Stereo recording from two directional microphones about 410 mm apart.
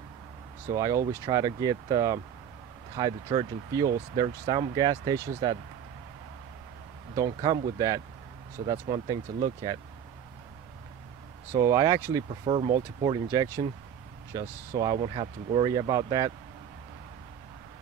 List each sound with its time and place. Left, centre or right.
0.7 s speech: centre
7.2 s speech: centre
11.5 s speech: centre